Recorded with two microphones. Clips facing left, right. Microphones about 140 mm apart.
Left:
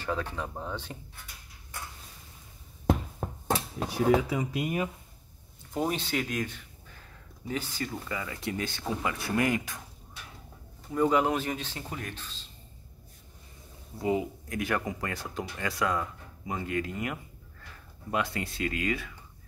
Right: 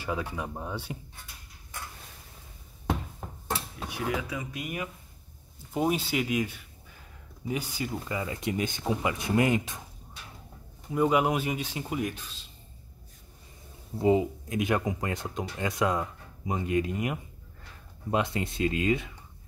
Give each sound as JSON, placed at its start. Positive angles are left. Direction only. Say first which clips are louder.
{"t": 0.0, "sound": "speech", "louder": "even", "side_deg": -10}
{"t": 3.9, "sound": "speech", "louder": "left 7 dB", "side_deg": 30}
{"t": 5.7, "sound": "speech", "louder": "right 3 dB", "side_deg": -10}
{"t": 10.9, "sound": "speech", "louder": "right 1 dB", "side_deg": -10}
{"t": 13.9, "sound": "speech", "louder": "right 5 dB", "side_deg": -25}